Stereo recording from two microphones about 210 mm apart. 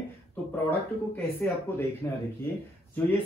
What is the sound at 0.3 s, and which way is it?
Speech, 10° left (ahead or behind).